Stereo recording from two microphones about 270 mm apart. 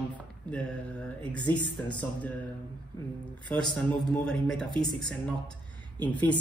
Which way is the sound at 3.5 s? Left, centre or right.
Centre.